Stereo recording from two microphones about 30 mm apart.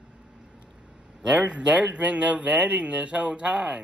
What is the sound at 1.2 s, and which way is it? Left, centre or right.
Speech, right.